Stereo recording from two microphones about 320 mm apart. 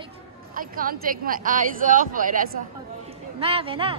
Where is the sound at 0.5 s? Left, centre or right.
Right.